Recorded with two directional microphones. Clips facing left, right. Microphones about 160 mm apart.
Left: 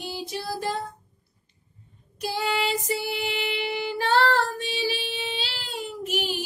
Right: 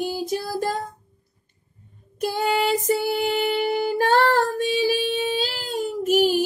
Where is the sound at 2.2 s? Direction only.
45° right (ahead or behind).